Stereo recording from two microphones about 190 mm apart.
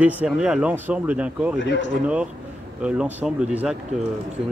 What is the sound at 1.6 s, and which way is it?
Speech, 70° left (ahead or behind).